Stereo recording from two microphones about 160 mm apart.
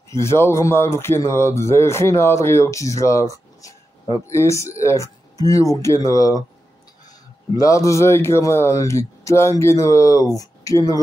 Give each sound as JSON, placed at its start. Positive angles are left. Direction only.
{"t": 0.2, "sound": "a man's voice", "side_deg": 15}
{"t": 7.5, "sound": "a man's voice", "side_deg": 20}